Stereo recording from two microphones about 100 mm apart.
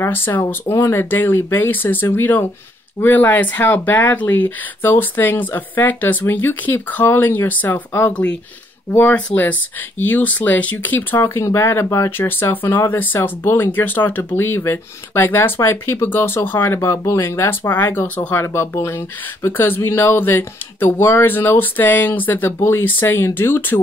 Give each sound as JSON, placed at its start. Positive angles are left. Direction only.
{"t": 0.0, "sound": "speech", "side_deg": 20}